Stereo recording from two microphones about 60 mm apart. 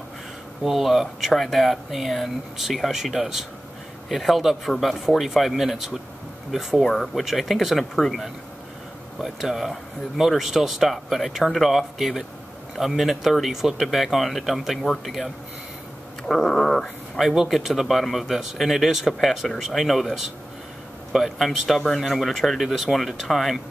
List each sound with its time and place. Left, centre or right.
0.7 s speech: centre
9.2 s speech: centre